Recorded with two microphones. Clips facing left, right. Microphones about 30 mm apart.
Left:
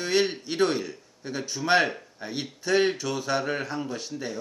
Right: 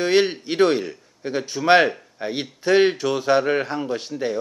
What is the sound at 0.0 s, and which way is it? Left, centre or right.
Speech, right.